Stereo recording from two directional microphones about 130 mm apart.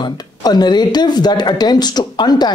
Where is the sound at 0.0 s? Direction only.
30° left (ahead or behind).